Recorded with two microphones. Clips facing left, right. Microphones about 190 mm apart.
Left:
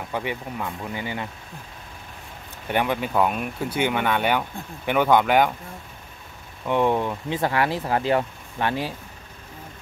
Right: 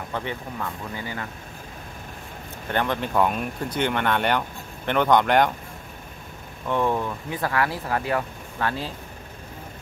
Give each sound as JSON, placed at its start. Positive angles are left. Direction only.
{"t": 0.1, "sound": "speech", "side_deg": 15}
{"t": 2.7, "sound": "speech", "side_deg": 10}
{"t": 6.7, "sound": "speech", "side_deg": 20}